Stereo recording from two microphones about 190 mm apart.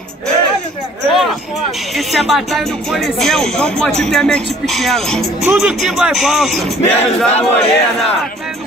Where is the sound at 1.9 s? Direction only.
Centre (ahead or behind).